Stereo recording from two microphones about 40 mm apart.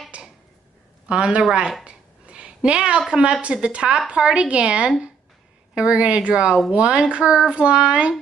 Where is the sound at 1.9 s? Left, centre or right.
Right.